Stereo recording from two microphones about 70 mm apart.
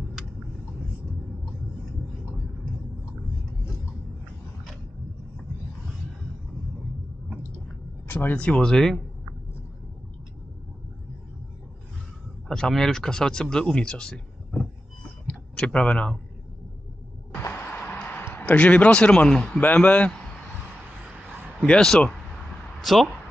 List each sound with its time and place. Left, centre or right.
8.1 s speech: left
8.4 s speech: centre
12.4 s speech: centre
17.5 s music: left
18.4 s speech: centre
21.5 s speech: centre
22.8 s speech: centre